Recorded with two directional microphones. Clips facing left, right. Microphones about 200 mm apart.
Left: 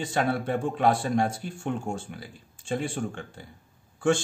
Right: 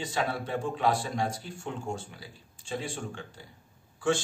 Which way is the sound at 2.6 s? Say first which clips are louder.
Left 5 dB; 55° left (ahead or behind).